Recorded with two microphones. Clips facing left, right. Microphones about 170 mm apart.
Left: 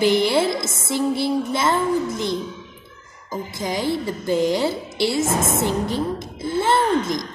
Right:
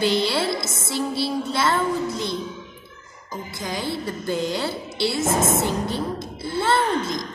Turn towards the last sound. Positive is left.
turn(degrees=20)  # may be behind; listen again after turning